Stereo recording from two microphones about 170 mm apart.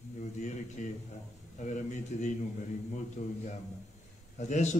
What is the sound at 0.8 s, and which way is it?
A man's voice, 50° left (ahead or behind).